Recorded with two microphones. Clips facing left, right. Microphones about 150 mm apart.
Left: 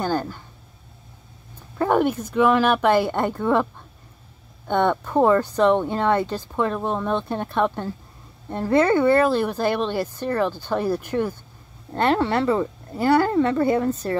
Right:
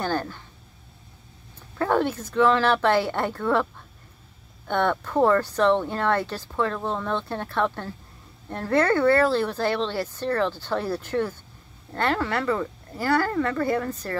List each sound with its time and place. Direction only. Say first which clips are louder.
0.0 s a sound: left 3 dB; 10° left (ahead or behind)
1.8 s speech: left 3 dB; 15° left (ahead or behind)
4.6 s speech: left 3 dB; 15° left (ahead or behind)
11.9 s speech: left 5 dB; 25° left (ahead or behind)